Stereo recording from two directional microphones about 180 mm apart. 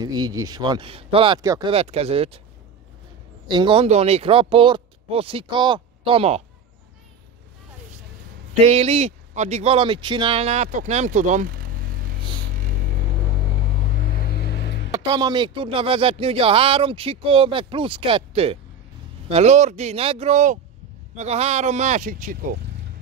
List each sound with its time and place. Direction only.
0.0 s speech: 20° right (ahead or behind)
1.7 s speech: 35° right (ahead or behind)
3.4 s speech: 25° right (ahead or behind)
8.6 s speech: 35° right (ahead or behind)
14.3 s music: 65° left (ahead or behind)
14.9 s speech: 25° right (ahead or behind); by 22.6 s 50° right (ahead or behind)